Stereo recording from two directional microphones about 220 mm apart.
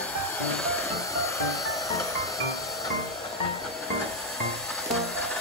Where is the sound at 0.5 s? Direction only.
Centre (ahead or behind).